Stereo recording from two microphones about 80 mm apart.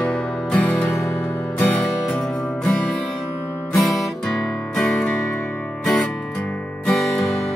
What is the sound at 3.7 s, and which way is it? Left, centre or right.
Music, centre.